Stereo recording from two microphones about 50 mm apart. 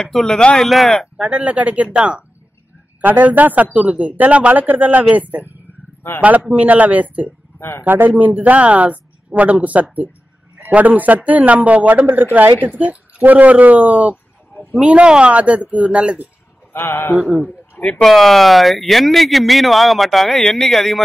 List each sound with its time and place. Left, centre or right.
0.0 s speech: centre
1.1 s speech: centre
3.0 s speech: right
7.5 s speech: left
7.8 s speech: right
16.7 s speech: left
17.2 s speech: right
18.0 s speech: centre